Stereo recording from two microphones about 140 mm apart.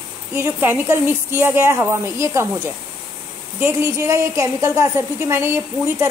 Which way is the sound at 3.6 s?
20° right (ahead or behind).